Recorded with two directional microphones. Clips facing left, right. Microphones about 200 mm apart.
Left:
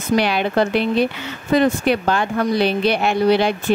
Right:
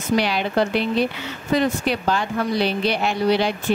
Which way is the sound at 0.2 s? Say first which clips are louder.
Left 3 dB; 60° left (ahead or behind).